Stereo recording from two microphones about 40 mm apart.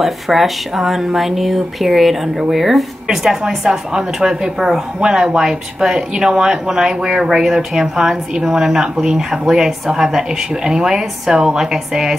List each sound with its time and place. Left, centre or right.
0.0 s speech: centre